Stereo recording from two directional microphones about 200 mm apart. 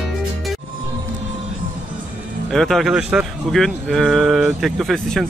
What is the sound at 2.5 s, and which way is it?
Speech, centre (ahead or behind).